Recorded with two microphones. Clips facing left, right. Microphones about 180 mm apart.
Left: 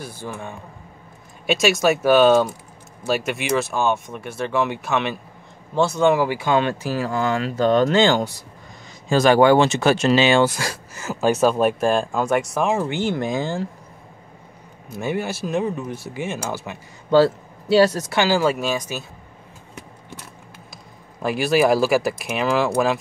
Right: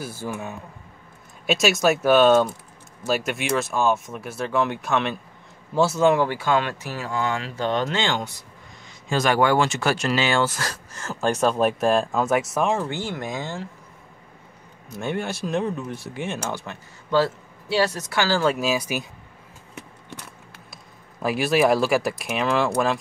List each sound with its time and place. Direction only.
0.0 s speech: 5° right (ahead or behind)
6.2 s speech: 15° left (ahead or behind)
6.6 s speech: 30° left (ahead or behind); by 12.8 s centre (ahead or behind)
12.8 s speech: 20° left (ahead or behind)
14.9 s speech: 5° left (ahead or behind)
17.1 s speech: 35° left (ahead or behind)
18.1 s speech: 15° left (ahead or behind)
18.4 s speech: centre (ahead or behind)
21.2 s speech: centre (ahead or behind)